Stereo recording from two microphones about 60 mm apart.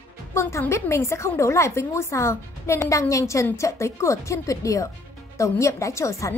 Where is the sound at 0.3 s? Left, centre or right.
Left.